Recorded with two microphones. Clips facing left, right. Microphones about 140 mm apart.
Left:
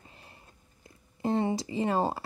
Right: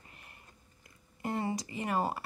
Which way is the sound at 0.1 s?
25° left (ahead or behind).